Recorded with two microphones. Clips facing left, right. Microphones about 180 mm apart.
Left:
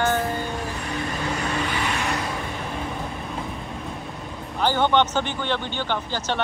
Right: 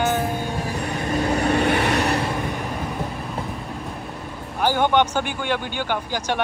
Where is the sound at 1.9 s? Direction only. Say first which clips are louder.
Right 6 dB; 35° right (ahead or behind).